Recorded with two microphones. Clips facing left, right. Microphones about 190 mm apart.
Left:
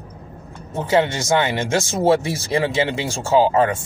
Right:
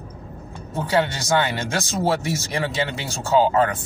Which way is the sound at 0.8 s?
25° left (ahead or behind).